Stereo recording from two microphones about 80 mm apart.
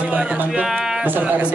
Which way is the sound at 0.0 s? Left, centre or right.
Centre.